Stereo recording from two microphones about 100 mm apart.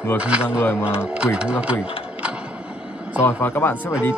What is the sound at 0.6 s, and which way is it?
Speech, 25° left (ahead or behind).